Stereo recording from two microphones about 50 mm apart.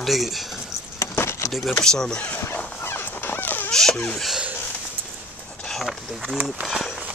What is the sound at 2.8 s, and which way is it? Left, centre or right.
Dog, left.